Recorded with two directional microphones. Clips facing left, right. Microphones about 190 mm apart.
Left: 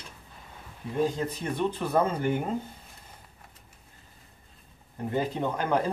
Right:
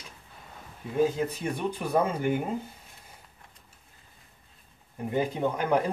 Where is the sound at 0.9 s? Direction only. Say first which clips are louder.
Right 2 dB; 5° right (ahead or behind).